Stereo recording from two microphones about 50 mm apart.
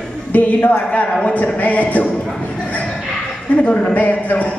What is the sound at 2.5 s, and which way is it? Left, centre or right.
Bow-wow, left.